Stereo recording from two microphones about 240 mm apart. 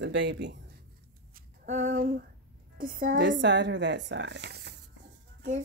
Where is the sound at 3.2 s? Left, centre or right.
Right.